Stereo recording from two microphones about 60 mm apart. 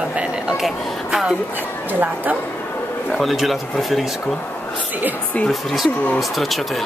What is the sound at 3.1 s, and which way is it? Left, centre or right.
Speech, centre.